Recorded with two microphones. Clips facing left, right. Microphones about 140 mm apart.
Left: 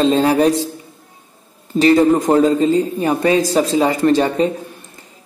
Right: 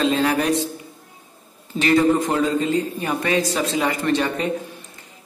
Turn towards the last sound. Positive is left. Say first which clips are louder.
# left 7 dB
turn(degrees=35)  # may be behind; listen again after turning